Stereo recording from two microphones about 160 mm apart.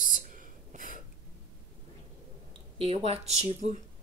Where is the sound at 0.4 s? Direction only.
55° right (ahead or behind).